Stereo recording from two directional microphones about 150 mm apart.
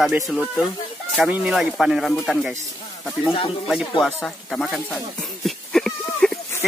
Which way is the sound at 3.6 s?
Centre (ahead or behind).